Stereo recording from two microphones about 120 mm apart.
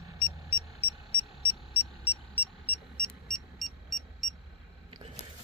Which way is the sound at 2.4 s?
15° left (ahead or behind).